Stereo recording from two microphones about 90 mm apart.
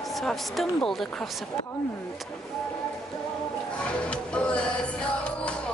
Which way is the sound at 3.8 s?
10° left (ahead or behind).